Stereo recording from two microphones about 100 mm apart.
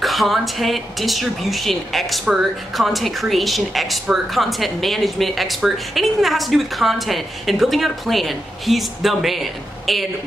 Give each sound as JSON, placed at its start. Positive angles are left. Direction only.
{"t": 0.0, "sound": "speech", "side_deg": 0}